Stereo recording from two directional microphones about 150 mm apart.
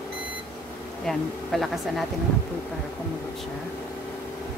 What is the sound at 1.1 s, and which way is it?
Speech, centre (ahead or behind).